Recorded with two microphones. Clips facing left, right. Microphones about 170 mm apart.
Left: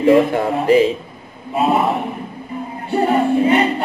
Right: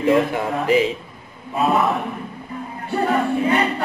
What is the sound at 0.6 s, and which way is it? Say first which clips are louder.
Speech: left 5 dB; 35° left (ahead or behind).